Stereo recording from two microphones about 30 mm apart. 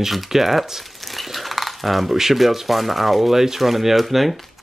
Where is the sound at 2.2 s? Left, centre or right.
Centre.